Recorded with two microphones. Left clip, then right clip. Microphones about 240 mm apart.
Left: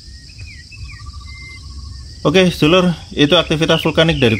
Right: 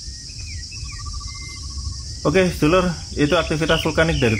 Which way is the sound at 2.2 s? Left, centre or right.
Left.